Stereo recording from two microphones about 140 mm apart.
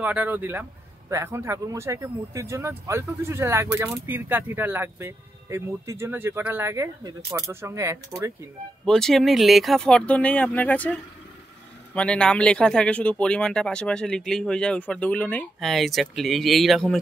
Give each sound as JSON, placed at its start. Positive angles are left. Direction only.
{"t": 0.0, "sound": "speech", "side_deg": -10}
{"t": 8.8, "sound": "speech", "side_deg": 5}